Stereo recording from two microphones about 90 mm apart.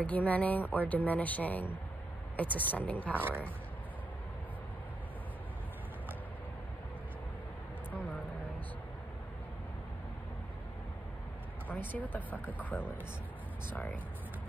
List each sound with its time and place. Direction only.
0.0 s speech: 15° left (ahead or behind)
3.2 s speech: 20° right (ahead or behind)
11.6 s speech: 20° left (ahead or behind)